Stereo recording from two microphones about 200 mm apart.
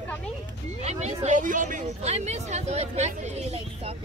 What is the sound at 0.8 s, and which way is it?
Speech, 35° right (ahead or behind).